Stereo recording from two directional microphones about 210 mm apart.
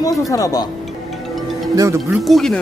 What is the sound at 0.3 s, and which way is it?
Speech, 15° left (ahead or behind).